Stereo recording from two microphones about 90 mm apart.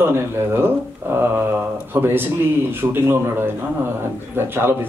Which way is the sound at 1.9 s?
25° right (ahead or behind).